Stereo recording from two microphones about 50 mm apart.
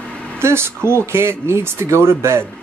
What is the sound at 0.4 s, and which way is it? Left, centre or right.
Speech, right.